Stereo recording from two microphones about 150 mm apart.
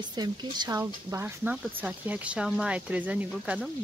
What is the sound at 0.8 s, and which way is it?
Speech, 15° right (ahead or behind).